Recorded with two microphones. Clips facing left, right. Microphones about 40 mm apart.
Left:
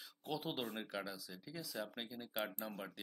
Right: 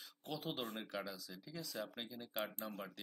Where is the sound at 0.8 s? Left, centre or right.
Centre.